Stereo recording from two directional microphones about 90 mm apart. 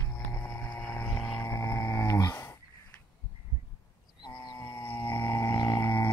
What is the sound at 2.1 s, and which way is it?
Dog, 40° left (ahead or behind).